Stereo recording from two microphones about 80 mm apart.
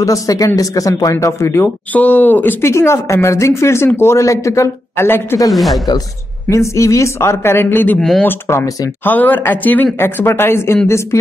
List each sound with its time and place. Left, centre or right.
0.0 s speech: left
1.1 s speech: left
2.0 s speech: left
2.7 s speech: left
5.5 s speech: centre
6.5 s speech: left
9.0 s speech: left